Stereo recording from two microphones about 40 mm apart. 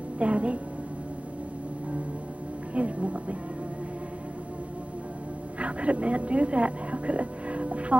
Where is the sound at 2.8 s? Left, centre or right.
Right.